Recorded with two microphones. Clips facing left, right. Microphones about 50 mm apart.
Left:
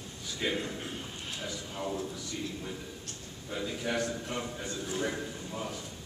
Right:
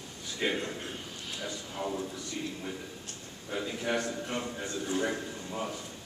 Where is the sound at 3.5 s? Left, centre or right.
Centre.